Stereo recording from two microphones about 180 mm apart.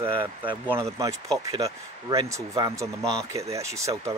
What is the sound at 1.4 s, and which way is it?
Speech, 20° right (ahead or behind).